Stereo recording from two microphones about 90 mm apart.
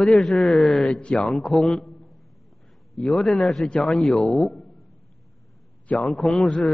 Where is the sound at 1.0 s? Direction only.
10° left (ahead or behind).